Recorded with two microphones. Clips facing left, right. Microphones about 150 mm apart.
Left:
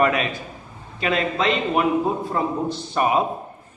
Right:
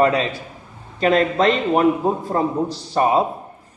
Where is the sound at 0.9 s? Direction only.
45° right (ahead or behind).